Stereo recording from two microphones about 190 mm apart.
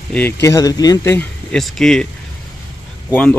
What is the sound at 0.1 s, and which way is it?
Speech, 10° left (ahead or behind).